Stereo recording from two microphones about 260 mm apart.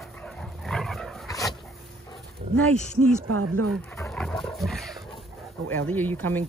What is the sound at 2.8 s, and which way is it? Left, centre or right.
Speech, left.